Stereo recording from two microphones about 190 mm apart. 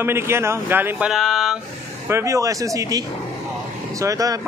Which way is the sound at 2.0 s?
15° right (ahead or behind).